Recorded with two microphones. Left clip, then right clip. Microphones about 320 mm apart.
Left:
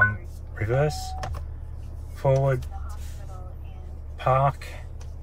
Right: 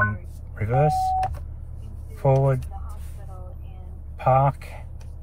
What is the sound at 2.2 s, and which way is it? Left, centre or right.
Speech, centre.